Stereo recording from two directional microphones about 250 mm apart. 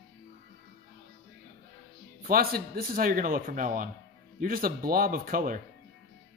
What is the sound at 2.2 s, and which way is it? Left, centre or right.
A man's voice, right.